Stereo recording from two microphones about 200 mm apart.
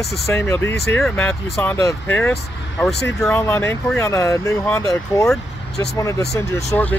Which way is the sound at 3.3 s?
15° left (ahead or behind).